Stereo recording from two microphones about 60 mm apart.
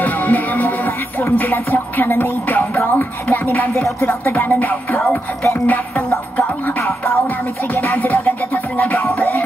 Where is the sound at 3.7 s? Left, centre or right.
Left.